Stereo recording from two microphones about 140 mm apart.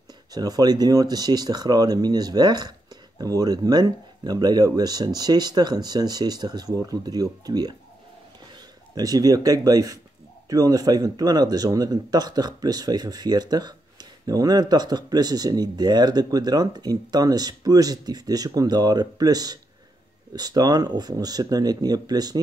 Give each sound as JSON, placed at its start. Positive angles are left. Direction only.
{"t": 0.3, "sound": "speech", "side_deg": -30}
{"t": 8.9, "sound": "speech", "side_deg": -25}